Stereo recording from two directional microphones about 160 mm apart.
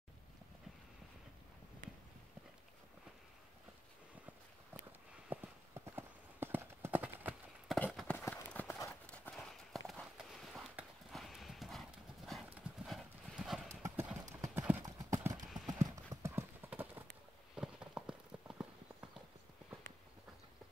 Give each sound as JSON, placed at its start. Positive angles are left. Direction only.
{"t": 5.3, "sound": "clip-clop", "side_deg": -15}
{"t": 7.6, "sound": "clip-clop", "side_deg": 0}
{"t": 9.1, "sound": "clip-clop", "side_deg": 5}
{"t": 13.8, "sound": "clip-clop", "side_deg": -15}